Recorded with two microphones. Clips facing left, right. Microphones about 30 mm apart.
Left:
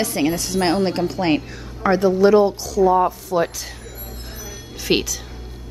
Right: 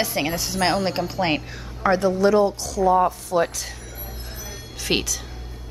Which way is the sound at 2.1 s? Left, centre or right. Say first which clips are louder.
Left 4 dB; centre.